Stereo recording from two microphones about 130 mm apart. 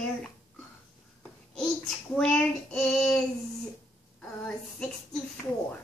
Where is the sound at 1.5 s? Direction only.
5° left (ahead or behind).